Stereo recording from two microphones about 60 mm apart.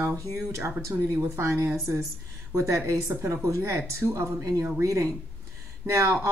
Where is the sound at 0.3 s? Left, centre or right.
Right.